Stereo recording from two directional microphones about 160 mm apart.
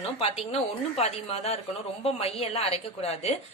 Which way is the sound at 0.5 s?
40° left (ahead or behind).